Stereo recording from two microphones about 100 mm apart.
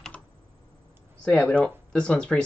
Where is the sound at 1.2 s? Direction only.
10° left (ahead or behind).